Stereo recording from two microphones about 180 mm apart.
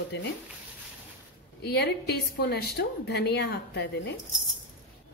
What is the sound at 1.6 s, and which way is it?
A woman's voice, 65° left (ahead or behind).